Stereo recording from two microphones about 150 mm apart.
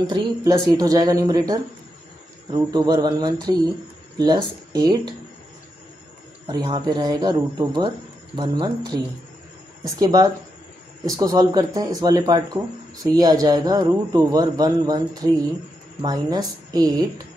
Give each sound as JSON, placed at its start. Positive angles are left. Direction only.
{"t": 0.0, "sound": "speech", "side_deg": -25}
{"t": 6.4, "sound": "speech", "side_deg": -30}